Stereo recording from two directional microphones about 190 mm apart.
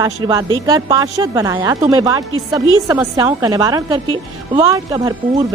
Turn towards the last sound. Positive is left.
turn(degrees=-20)  # may be behind; listen again after turning